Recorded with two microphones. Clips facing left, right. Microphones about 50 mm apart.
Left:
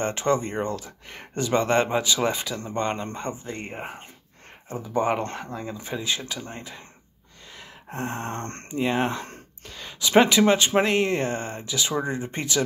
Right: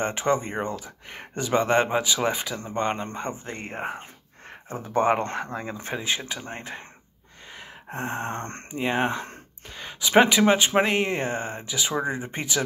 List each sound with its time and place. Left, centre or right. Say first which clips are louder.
0.0 s speech: even; centre
3.4 s speech: right 2 dB; right
5.9 s speech: even; right
7.5 s speech: even; centre